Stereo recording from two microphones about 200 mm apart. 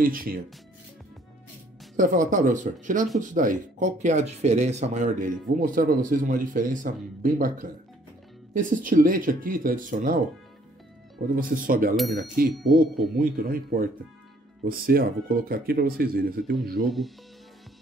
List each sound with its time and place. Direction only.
0.0 s speech: 45° right (ahead or behind)
2.0 s speech: 40° right (ahead or behind)
16.8 s speech: centre (ahead or behind)